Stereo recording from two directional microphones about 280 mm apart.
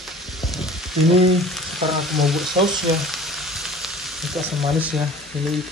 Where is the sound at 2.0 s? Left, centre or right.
Centre.